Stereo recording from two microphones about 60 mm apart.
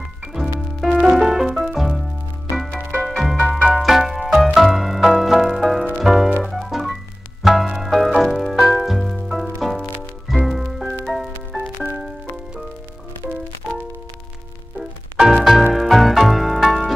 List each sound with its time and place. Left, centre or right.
0.3 s music: centre
3.1 s music: centre
11.5 s music: right
14.8 s music: centre